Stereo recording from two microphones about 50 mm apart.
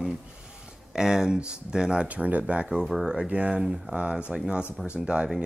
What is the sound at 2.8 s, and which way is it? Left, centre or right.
Speech, centre.